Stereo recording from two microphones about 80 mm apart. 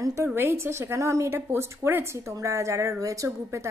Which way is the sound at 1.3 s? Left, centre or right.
Right.